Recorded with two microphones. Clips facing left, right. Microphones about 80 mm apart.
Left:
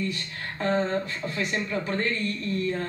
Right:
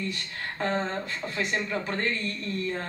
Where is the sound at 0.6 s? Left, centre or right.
Right.